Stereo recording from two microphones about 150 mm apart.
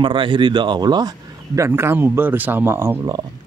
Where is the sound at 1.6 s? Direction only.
15° right (ahead or behind).